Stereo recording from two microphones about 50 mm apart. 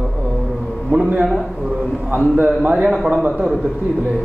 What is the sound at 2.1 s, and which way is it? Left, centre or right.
A man's voice, right.